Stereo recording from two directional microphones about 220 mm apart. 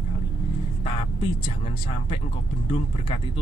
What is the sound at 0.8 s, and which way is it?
Speech, 25° left (ahead or behind).